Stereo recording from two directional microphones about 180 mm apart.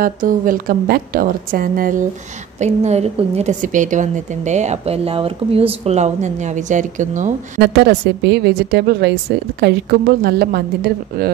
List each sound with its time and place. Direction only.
0.0 s a woman's voice: 50° right (ahead or behind)
2.6 s a woman's voice: 40° right (ahead or behind)
7.6 s a woman's voice: 65° right (ahead or behind)